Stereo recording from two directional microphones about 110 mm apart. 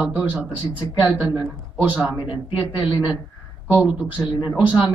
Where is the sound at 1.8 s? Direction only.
15° right (ahead or behind).